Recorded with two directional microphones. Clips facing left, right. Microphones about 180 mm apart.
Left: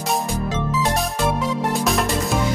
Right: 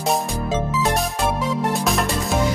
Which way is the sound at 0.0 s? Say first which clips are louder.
Right 1 dB; centre (ahead or behind).